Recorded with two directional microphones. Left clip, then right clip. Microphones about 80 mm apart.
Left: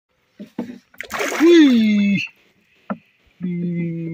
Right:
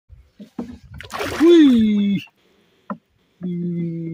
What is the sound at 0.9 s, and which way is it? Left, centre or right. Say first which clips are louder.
Splash: left 2 dB; left.